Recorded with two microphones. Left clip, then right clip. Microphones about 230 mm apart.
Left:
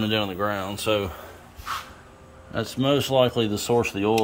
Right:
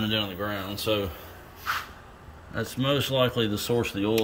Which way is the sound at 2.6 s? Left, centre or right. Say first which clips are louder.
Left 3 dB; left.